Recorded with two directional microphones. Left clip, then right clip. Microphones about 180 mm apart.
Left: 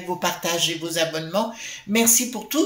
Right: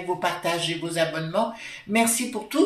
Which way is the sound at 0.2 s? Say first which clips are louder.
Left 5 dB; 50° left (ahead or behind).